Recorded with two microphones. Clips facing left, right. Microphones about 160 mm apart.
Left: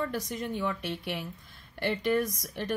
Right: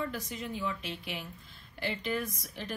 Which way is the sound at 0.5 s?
60° left (ahead or behind).